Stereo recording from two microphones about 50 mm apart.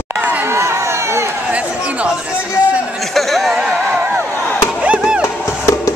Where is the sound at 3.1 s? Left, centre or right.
Centre.